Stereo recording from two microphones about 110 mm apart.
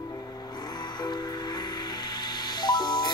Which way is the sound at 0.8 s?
40° left (ahead or behind).